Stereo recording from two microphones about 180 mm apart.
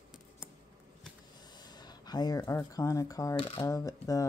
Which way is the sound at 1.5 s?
25° left (ahead or behind).